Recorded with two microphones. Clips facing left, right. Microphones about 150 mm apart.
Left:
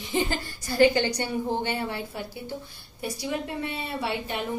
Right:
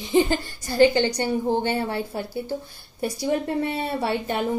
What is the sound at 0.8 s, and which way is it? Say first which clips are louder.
A woman's voice: right 3 dB; 25° right (ahead or behind).